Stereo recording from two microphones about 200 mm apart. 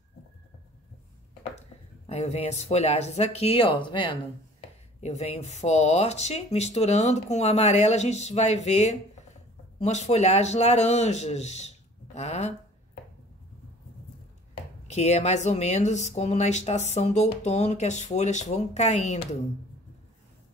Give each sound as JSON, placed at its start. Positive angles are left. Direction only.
{"t": 2.0, "sound": "speech", "side_deg": 35}
{"t": 14.9, "sound": "speech", "side_deg": 35}